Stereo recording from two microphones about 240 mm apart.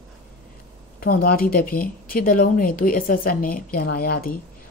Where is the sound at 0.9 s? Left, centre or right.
Left.